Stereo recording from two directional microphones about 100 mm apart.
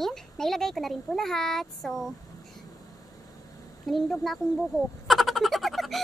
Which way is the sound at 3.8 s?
Centre (ahead or behind).